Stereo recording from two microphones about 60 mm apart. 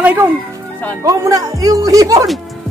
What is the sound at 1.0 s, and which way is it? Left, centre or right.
Speech, right.